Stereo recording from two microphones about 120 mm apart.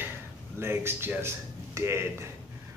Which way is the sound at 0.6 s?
20° right (ahead or behind).